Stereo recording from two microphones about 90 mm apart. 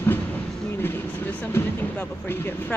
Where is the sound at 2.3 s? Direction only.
25° left (ahead or behind).